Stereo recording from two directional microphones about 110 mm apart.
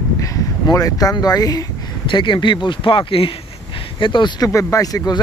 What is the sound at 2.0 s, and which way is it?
Speech, 50° left (ahead or behind).